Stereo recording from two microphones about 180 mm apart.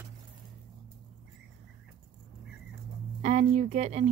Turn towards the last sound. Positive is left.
turn(degrees=-40)  # may be behind; listen again after turning